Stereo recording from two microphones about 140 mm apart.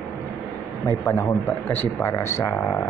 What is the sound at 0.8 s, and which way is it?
Speech, 20° left (ahead or behind).